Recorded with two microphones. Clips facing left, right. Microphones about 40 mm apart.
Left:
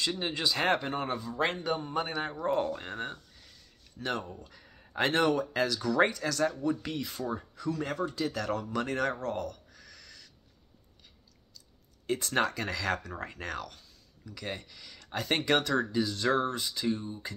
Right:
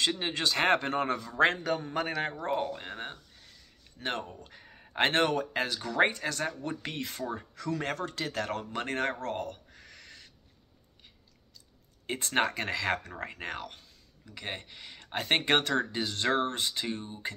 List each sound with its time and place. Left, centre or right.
0.2 s speech: right
1.4 s a man's voice: right
2.5 s speech: centre
4.0 s speech: right
5.4 s speech: right
6.8 s speech: right
12.1 s speech: right